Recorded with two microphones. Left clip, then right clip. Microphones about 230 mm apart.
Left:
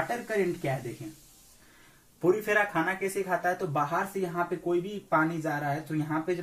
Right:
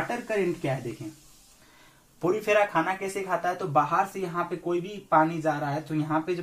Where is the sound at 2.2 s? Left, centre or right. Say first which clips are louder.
Right 2 dB; centre.